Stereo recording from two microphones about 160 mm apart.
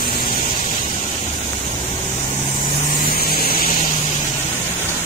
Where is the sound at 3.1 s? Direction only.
70° left (ahead or behind).